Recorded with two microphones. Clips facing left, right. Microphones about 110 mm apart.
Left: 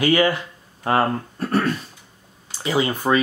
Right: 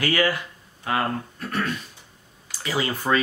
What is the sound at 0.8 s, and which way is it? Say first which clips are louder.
Speech: left 5 dB; 35° left (ahead or behind).